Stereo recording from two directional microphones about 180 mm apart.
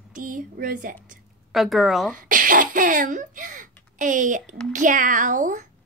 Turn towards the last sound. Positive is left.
turn(degrees=-45)  # may be behind; listen again after turning